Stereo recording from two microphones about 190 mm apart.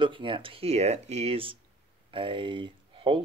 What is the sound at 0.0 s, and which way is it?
Speech, 25° right (ahead or behind).